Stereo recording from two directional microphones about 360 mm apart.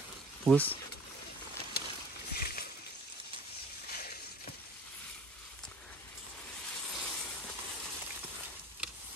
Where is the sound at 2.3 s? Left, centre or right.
Left.